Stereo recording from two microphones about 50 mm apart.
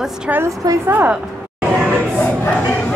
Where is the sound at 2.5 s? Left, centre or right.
Left.